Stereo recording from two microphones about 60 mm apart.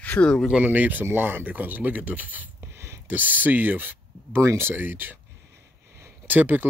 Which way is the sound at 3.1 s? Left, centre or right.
Right.